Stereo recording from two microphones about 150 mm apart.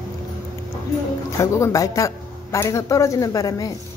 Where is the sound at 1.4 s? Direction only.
20° left (ahead or behind).